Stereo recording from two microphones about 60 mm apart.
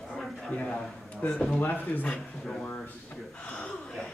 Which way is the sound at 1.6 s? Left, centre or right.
Left.